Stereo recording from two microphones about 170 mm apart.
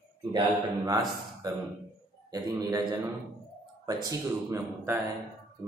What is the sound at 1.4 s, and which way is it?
A man's voice, 20° right (ahead or behind).